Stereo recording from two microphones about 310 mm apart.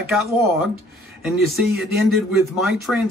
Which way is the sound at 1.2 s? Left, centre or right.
Centre.